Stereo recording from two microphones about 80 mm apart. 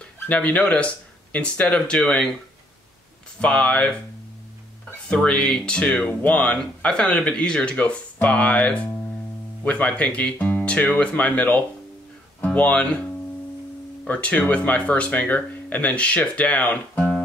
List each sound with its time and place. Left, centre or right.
0.0 s speech: centre
3.3 s speech: centre
5.0 s speech: centre
14.0 s speech: centre